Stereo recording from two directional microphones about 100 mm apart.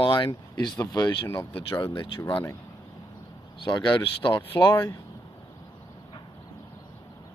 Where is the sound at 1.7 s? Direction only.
55° left (ahead or behind).